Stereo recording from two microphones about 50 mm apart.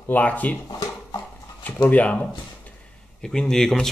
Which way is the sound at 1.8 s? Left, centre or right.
Left.